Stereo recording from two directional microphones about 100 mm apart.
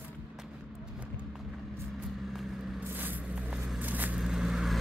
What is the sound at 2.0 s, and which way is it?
Vehicle, centre (ahead or behind).